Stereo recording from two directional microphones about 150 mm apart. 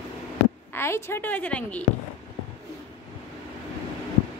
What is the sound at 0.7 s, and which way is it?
A woman's voice, 15° left (ahead or behind).